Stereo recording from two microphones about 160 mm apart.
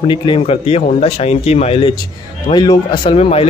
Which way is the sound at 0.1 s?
30° left (ahead or behind).